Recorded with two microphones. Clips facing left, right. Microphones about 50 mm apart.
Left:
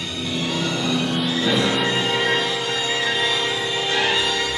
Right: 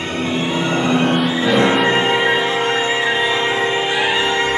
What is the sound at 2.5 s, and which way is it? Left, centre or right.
Music, right.